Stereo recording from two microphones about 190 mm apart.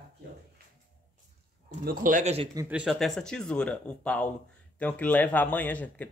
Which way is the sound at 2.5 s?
15° right (ahead or behind).